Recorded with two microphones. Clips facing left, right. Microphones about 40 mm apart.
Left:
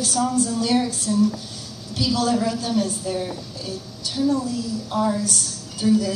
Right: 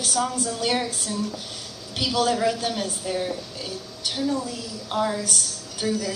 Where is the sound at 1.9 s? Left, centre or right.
Right.